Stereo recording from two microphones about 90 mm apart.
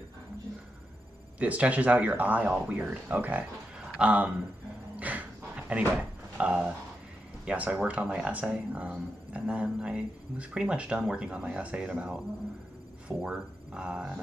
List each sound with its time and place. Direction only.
1.4 s speech: 15° right (ahead or behind)
4.9 s dog: 15° right (ahead or behind)
5.7 s speech: 15° right (ahead or behind)